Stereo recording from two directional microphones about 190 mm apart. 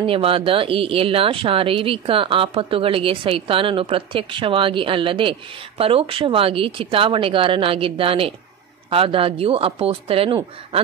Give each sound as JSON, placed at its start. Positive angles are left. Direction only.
{"t": 0.0, "sound": "speech", "side_deg": -30}